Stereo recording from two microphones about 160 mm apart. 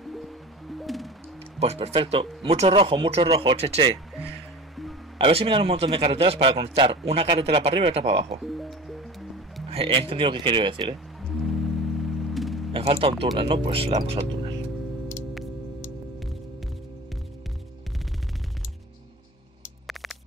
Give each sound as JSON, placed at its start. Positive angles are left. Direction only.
{"t": 0.0, "sound": "music", "side_deg": 0}
{"t": 1.6, "sound": "a man's voice", "side_deg": -40}
{"t": 5.2, "sound": "a man's voice", "side_deg": -35}
{"t": 8.4, "sound": "music", "side_deg": 0}
{"t": 9.7, "sound": "a man's voice", "side_deg": -35}
{"t": 11.2, "sound": "music", "side_deg": 0}
{"t": 12.7, "sound": "a man's voice", "side_deg": -35}